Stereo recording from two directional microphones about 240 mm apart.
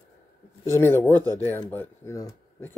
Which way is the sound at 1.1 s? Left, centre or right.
Centre.